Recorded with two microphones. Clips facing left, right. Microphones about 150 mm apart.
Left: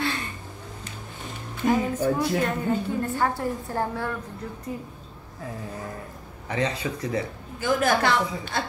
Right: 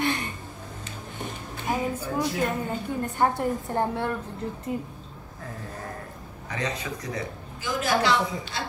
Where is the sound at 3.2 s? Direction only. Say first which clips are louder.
Right 2 dB; 20° right (ahead or behind).